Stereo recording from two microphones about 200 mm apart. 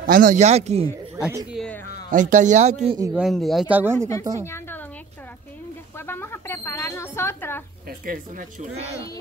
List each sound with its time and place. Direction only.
0.0 s speech: 45° right (ahead or behind)
1.1 s speech: 10° right (ahead or behind)
2.0 s speech: 40° right (ahead or behind)
3.2 s a woman's voice: centre (ahead or behind); by 4.5 s 15° right (ahead or behind)
4.5 s a sound: 10° left (ahead or behind)
5.9 s a sound: 10° left (ahead or behind)
8.0 s speech: 45° right (ahead or behind)